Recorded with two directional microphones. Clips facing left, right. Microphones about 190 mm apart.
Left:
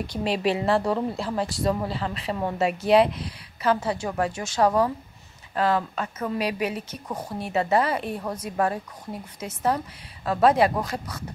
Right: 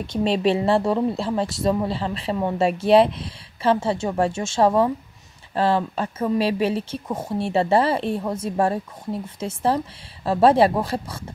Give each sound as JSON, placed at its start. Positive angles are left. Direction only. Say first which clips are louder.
{"t": 0.0, "sound": "speech", "louder": "right 4 dB", "side_deg": -25}